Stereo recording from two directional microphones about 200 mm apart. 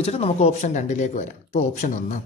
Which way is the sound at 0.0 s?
30° left (ahead or behind).